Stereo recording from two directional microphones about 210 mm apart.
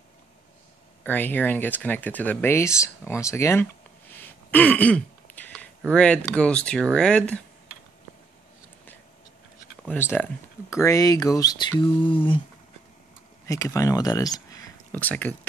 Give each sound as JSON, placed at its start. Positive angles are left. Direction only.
{"t": 1.0, "sound": "speech", "side_deg": 10}
{"t": 4.1, "sound": "throat clearing", "side_deg": 10}
{"t": 5.9, "sound": "speech", "side_deg": 5}
{"t": 9.8, "sound": "speech", "side_deg": 10}
{"t": 13.5, "sound": "speech", "side_deg": 15}